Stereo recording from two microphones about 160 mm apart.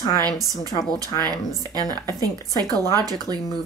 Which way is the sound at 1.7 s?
25° right (ahead or behind).